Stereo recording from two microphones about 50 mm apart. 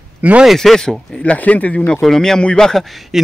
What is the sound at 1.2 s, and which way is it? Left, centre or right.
Speech, left.